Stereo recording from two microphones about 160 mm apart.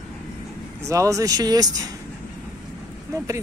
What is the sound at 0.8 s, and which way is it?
Speech, 20° right (ahead or behind).